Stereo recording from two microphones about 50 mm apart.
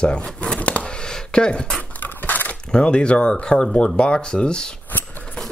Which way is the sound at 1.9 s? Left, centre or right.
Left.